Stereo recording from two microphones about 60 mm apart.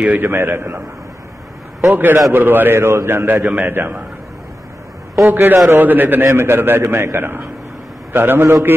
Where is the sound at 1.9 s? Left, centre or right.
Right.